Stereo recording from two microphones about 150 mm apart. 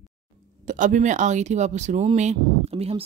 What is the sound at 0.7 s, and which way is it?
Speech, 60° right (ahead or behind).